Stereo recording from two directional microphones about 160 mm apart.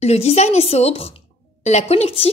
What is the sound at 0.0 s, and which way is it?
Speech, 40° left (ahead or behind).